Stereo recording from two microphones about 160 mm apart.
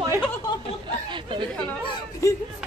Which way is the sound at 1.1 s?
30° right (ahead or behind).